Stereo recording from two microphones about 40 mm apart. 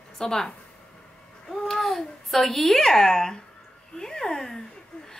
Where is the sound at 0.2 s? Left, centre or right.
Centre.